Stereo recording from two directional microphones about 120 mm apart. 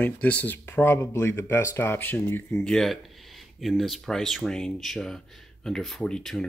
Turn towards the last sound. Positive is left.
turn(degrees=5)  # may be behind; listen again after turning